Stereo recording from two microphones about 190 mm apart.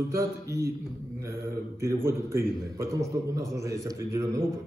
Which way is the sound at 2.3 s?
15° right (ahead or behind).